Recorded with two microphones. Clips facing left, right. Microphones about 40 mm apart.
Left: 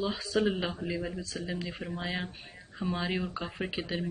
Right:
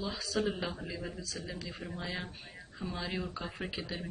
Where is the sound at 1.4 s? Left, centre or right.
Left.